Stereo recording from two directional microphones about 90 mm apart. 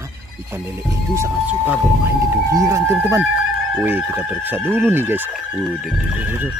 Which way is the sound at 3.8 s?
20° right (ahead or behind).